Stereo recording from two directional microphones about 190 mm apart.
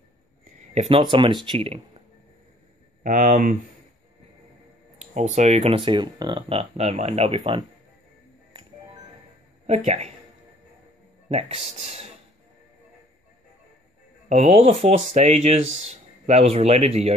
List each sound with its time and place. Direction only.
0.7 s speech: 30° right (ahead or behind)
3.0 s speech: 40° right (ahead or behind)
4.9 s speech: 40° right (ahead or behind)
9.7 s speech: 35° right (ahead or behind)
11.2 s speech: 35° right (ahead or behind)
14.3 s speech: 35° right (ahead or behind)